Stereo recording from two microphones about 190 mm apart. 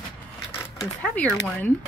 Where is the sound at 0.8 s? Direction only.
5° left (ahead or behind).